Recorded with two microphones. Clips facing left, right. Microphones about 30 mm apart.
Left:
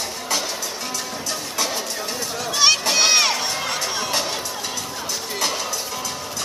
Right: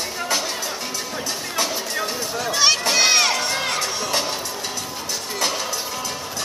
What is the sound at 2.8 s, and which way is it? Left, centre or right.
Crowd, centre.